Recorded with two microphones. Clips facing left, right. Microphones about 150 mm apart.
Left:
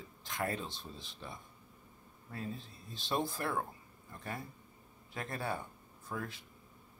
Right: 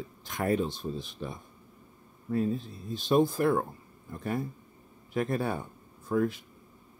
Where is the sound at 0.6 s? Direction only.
50° right (ahead or behind).